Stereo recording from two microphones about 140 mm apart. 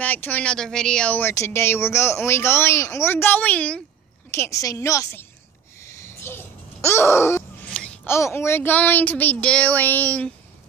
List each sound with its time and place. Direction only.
0.0 s speech: 10° left (ahead or behind)
4.3 s a woman's voice: 20° left (ahead or behind)
5.9 s a sound: 20° left (ahead or behind)
7.7 s speech: 5° left (ahead or behind)